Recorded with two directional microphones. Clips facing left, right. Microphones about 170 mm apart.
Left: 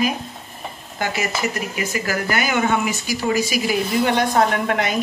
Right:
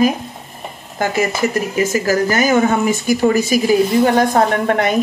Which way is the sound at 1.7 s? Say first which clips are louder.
Right 8 dB; 40° right (ahead or behind).